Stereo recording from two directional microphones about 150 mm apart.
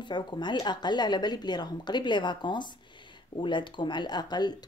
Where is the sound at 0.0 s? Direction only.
30° left (ahead or behind).